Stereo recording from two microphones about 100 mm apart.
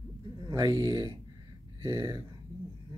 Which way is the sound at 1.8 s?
35° right (ahead or behind).